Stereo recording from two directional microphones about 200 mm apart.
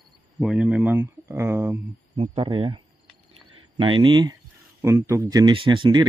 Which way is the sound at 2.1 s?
25° right (ahead or behind).